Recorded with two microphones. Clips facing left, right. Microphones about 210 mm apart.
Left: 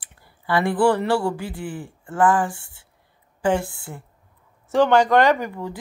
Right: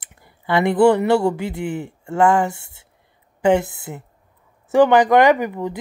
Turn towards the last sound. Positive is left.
turn(degrees=-20)  # may be behind; listen again after turning